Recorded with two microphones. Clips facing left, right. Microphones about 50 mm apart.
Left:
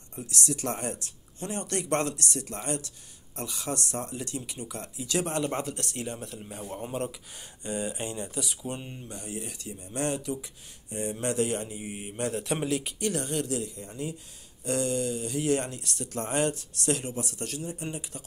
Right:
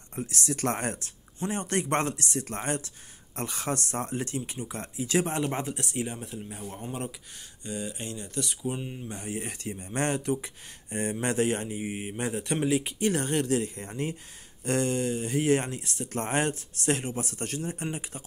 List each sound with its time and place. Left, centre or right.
0.1 s speech: right
1.4 s speech: right; by 6.1 s centre
6.5 s speech: centre
7.6 s speech: left
8.4 s speech: centre
9.1 s speech: right; by 13.1 s centre
13.1 s speech: right
14.6 s speech: right
16.1 s speech: right